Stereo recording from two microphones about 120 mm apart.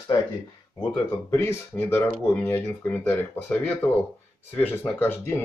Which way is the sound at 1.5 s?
20° left (ahead or behind).